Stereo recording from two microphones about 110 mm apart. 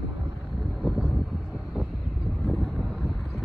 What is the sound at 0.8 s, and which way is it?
Vehicle, 5° right (ahead or behind).